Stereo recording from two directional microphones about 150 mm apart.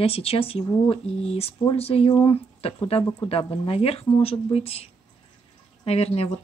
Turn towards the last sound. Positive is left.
turn(degrees=40)  # may be behind; listen again after turning